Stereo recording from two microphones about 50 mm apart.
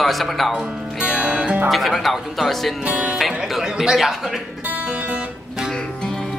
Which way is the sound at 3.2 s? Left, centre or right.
Centre.